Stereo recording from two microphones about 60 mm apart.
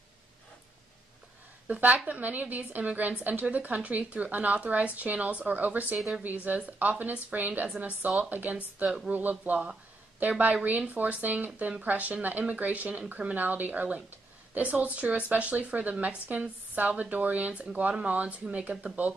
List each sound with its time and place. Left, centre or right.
1.7 s a woman's voice: right
8.8 s speech: centre
9.1 s a woman's voice: right